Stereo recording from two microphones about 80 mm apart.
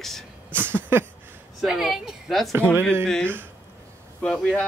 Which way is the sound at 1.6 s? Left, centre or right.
Centre.